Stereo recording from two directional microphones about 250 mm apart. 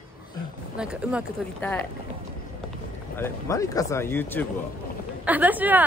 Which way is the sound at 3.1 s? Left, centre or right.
Centre.